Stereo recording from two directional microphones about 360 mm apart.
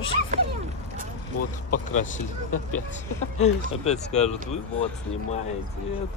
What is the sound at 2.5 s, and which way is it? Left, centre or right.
Speech, left.